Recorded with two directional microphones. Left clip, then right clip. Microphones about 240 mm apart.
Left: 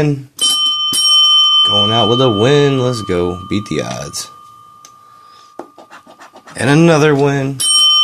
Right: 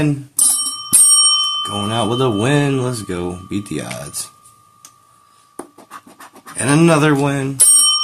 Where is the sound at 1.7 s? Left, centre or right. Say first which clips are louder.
Left 8 dB; left.